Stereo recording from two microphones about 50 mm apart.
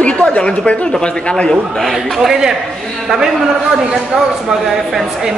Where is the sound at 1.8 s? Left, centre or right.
Centre.